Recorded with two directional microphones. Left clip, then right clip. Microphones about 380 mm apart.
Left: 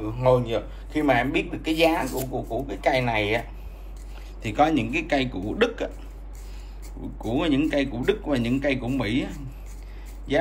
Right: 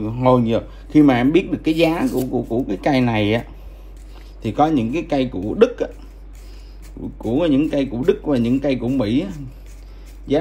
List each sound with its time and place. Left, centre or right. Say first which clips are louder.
0.2 s speech: right 5 dB; centre
7.2 s speech: right 6 dB; centre